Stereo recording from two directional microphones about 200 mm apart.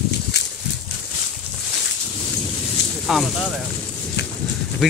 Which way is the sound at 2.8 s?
60° left (ahead or behind).